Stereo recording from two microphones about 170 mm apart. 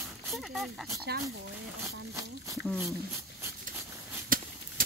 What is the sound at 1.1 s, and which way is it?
Speech, 70° right (ahead or behind).